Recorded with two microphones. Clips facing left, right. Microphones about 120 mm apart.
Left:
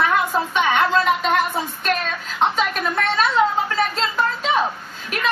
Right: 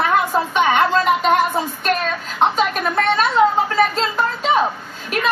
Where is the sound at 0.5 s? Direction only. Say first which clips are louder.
Right 2 dB; 35° right (ahead or behind).